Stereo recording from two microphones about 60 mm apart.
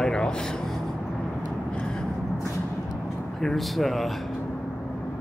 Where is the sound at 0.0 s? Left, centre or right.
Centre.